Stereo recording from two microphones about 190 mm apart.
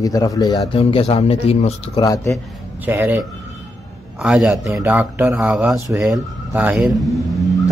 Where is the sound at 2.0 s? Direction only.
15° left (ahead or behind).